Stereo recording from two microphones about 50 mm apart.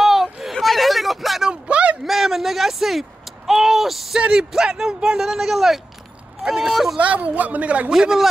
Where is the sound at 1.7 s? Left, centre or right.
Right.